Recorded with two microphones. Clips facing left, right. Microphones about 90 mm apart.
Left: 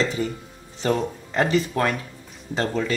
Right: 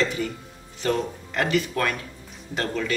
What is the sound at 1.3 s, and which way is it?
Speech, 30° left (ahead or behind).